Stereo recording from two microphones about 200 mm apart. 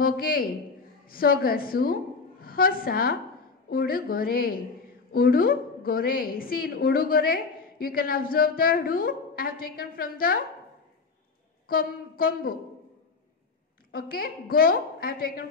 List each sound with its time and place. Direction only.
0.0 s a woman's voice: 50° left (ahead or behind)
11.6 s a woman's voice: 45° left (ahead or behind)
13.9 s a woman's voice: 50° left (ahead or behind)